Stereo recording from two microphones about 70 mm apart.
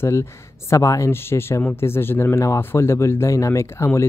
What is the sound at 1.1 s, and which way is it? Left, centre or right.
Speech, left.